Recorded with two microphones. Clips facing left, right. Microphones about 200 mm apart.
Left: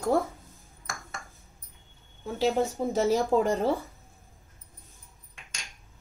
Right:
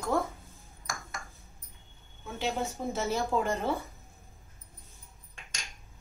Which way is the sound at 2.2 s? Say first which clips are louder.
Left 7 dB; 35° left (ahead or behind).